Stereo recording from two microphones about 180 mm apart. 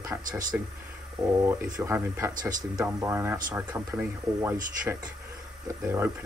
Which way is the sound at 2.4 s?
45° right (ahead or behind).